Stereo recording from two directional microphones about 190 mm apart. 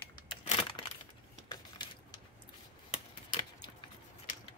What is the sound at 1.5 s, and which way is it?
Keys jangling, 20° left (ahead or behind).